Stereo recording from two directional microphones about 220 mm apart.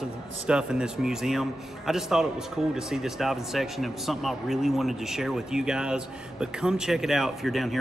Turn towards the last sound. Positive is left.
turn(degrees=0)  # may be behind; listen again after turning